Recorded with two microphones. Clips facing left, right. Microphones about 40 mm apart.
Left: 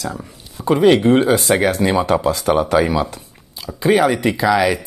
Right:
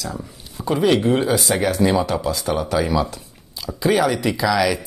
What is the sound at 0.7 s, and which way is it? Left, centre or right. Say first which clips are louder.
Speech: left 5 dB; left.